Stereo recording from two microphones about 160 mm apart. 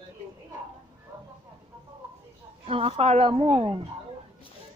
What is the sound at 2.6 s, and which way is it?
A woman's voice, 35° right (ahead or behind).